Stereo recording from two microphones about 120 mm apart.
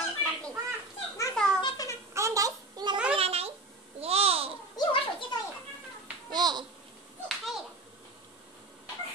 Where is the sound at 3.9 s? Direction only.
55° right (ahead or behind).